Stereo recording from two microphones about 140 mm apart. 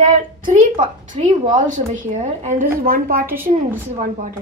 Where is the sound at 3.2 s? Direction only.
15° right (ahead or behind).